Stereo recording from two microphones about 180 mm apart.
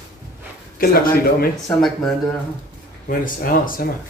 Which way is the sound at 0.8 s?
55° left (ahead or behind).